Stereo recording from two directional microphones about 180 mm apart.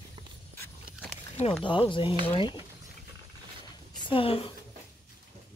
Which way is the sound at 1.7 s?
25° left (ahead or behind).